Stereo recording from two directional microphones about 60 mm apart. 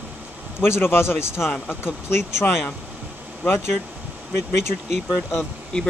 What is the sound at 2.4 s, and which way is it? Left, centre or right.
Speech, left.